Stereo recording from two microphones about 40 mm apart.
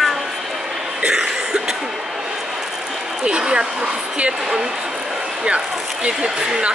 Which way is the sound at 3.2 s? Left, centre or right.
Right.